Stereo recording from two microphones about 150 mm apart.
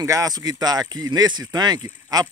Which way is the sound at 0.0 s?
20° right (ahead or behind).